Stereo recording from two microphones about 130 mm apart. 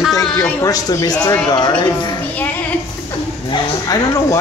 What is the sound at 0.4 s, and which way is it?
Speech, 30° left (ahead or behind).